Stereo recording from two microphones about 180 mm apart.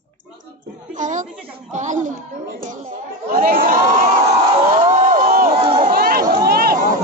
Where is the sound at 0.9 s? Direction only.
45° right (ahead or behind).